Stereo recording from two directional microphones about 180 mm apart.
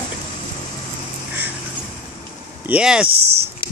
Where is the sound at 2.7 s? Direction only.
5° right (ahead or behind).